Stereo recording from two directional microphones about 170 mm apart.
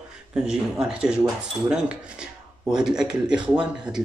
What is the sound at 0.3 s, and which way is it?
Speech, 5° right (ahead or behind).